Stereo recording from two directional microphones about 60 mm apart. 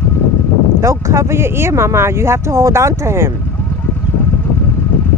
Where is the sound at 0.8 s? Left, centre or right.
Right.